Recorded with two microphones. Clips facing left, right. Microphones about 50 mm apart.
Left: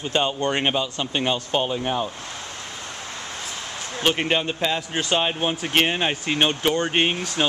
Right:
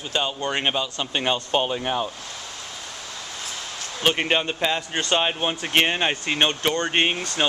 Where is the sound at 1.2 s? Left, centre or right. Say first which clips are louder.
Even; centre.